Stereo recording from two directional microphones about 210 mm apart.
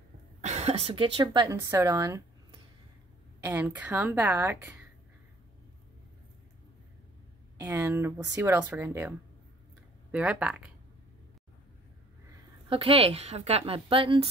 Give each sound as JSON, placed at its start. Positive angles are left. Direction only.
{"t": 0.4, "sound": "speech", "side_deg": -30}
{"t": 3.4, "sound": "speech", "side_deg": -10}
{"t": 7.5, "sound": "speech", "side_deg": -10}
{"t": 10.1, "sound": "speech", "side_deg": -5}
{"t": 12.6, "sound": "speech", "side_deg": -25}